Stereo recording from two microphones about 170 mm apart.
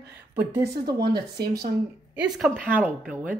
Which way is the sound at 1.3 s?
65° right (ahead or behind).